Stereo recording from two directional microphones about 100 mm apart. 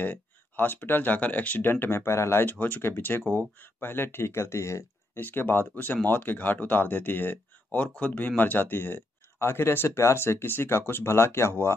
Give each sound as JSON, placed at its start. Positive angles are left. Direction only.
{"t": 0.0, "sound": "speech", "side_deg": 20}